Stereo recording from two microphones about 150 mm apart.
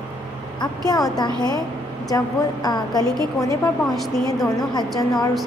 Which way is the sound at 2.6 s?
25° left (ahead or behind).